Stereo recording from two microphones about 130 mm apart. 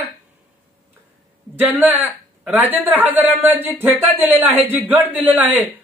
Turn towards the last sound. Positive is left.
turn(degrees=-15)  # may be behind; listen again after turning